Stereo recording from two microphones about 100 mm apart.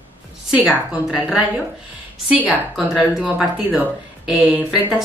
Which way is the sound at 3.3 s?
5° right (ahead or behind).